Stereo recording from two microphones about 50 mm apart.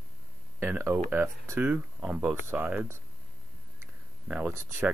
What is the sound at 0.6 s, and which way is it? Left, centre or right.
Speech, right.